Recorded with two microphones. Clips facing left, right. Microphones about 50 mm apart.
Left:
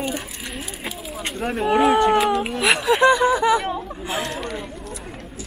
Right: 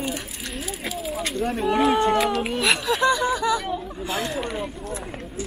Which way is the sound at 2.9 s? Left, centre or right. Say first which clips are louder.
Left 8 dB; left.